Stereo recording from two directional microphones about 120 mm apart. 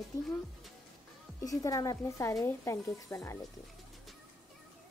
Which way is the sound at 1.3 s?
30° left (ahead or behind).